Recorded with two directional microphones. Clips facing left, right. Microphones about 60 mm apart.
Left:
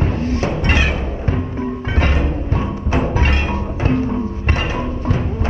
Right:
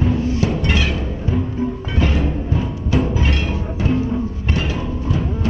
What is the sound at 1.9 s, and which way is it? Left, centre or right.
Music, left.